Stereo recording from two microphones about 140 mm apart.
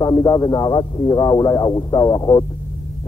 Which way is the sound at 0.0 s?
30° left (ahead or behind).